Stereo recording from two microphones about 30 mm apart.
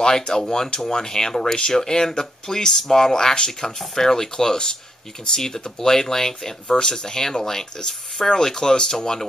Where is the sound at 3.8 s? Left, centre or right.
Centre.